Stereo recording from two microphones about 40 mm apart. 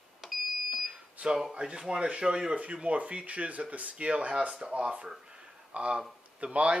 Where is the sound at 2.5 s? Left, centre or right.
Right.